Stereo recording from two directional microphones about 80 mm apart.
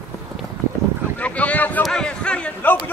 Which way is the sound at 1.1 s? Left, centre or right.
Centre.